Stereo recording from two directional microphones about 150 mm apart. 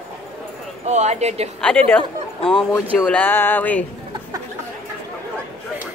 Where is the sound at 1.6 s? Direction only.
10° left (ahead or behind).